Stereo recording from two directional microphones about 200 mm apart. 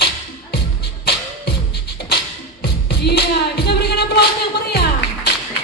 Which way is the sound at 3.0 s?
55° left (ahead or behind).